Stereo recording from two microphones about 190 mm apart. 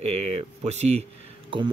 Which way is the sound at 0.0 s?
35° right (ahead or behind).